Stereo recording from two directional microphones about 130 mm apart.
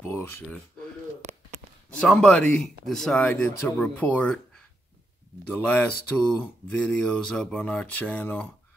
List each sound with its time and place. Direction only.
0.0 s speech: 15° left (ahead or behind)
1.9 s speech: 10° left (ahead or behind)
5.5 s speech: 15° left (ahead or behind)